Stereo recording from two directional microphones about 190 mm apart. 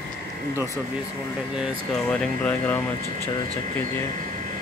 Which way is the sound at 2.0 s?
5° left (ahead or behind).